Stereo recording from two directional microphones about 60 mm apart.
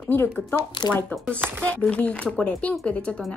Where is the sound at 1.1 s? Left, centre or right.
Centre.